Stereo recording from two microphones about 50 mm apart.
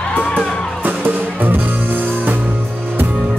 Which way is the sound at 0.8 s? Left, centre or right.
Right.